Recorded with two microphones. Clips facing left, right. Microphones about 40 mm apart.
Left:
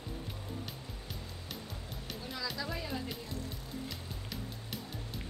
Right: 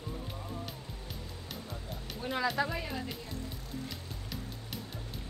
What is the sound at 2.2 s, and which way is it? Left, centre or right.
Speech, right.